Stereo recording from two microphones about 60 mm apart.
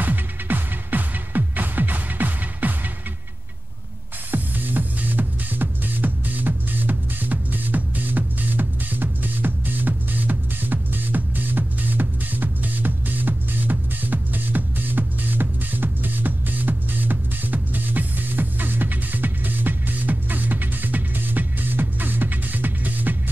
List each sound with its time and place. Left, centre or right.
0.0 s music: right
4.3 s music: right